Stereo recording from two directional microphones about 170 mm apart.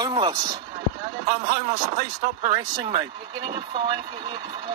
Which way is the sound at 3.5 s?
25° right (ahead or behind).